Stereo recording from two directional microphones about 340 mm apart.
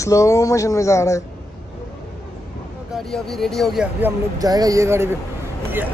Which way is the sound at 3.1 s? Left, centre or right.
Centre.